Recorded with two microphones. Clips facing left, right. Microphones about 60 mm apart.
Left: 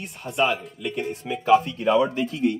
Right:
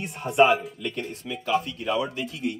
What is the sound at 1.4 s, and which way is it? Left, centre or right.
Speech, centre.